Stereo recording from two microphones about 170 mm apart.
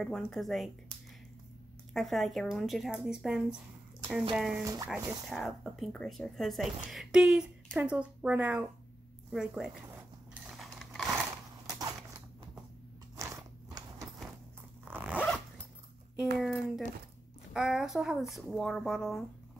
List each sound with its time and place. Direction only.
0.0 s a woman's voice: centre (ahead or behind)
2.0 s a woman's voice: centre (ahead or behind)
9.9 s a sound: 5° right (ahead or behind)
13.2 s biting: 20° right (ahead or behind)
14.9 s zipper: 10° right (ahead or behind)
15.2 s zipper: 5° left (ahead or behind)
16.3 s a sound: centre (ahead or behind)
17.6 s speech: 5° right (ahead or behind)